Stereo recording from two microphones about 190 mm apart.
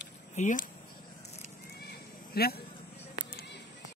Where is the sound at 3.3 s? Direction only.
50° left (ahead or behind).